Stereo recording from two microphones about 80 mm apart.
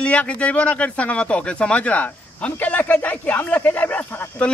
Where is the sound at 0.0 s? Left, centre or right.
Centre.